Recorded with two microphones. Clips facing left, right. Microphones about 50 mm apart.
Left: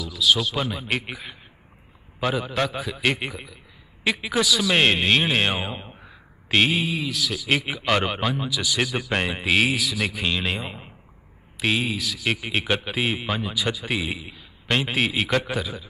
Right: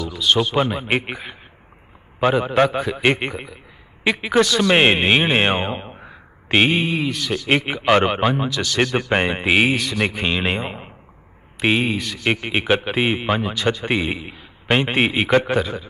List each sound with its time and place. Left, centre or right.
0.0 s a man's voice: centre
2.2 s a man's voice: right
4.4 s a man's voice: centre
4.6 s a man's voice: right; by 7.4 s centre
7.4 s a man's voice: centre
8.5 s a man's voice: centre
8.9 s a man's voice: right
12.0 s a man's voice: centre
15.5 s a man's voice: centre